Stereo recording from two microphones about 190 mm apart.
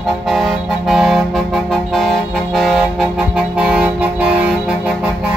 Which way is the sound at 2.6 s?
Centre (ahead or behind).